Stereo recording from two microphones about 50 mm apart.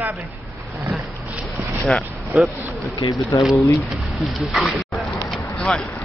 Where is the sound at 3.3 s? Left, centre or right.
Left.